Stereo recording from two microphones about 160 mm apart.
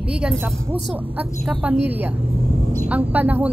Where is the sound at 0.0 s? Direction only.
5° right (ahead or behind).